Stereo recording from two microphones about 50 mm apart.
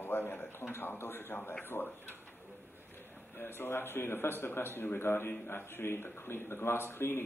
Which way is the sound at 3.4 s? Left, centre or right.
Left.